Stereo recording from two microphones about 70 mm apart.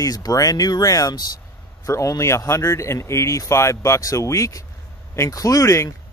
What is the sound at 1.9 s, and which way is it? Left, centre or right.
Speech, left.